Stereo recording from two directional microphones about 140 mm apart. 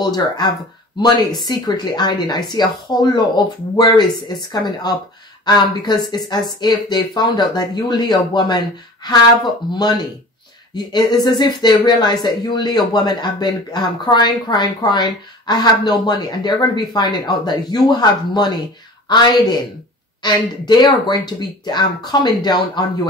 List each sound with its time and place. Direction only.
0.0 s speech: 30° left (ahead or behind)